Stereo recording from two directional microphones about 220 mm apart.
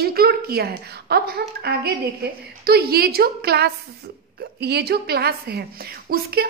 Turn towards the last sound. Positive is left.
turn(degrees=-45)  # may be behind; listen again after turning